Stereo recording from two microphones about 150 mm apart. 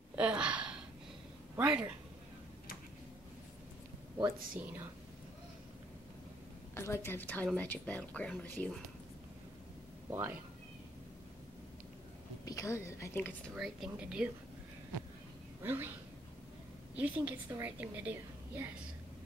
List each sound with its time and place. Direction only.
0.1 s a sound: 5° right (ahead or behind)
1.6 s a woman's voice: 5° right (ahead or behind)
6.7 s speech: 15° left (ahead or behind)
10.0 s speech: 15° right (ahead or behind)
12.4 s a woman's voice: 20° left (ahead or behind)
13.6 s speech: 5° right (ahead or behind)
15.6 s speech: 15° right (ahead or behind)
16.9 s a woman's voice: 10° right (ahead or behind)